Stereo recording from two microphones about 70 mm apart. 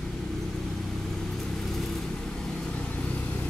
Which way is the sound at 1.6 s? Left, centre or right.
Centre.